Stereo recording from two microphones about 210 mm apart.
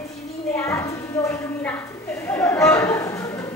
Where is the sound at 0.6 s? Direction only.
15° left (ahead or behind).